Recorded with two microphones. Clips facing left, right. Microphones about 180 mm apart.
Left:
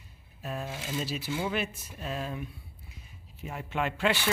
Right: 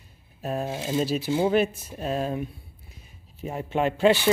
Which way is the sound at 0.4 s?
40° right (ahead or behind).